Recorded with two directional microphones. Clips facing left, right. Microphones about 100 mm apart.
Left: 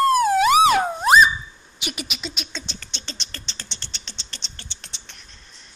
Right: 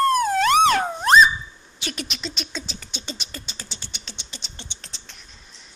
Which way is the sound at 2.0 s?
5° left (ahead or behind).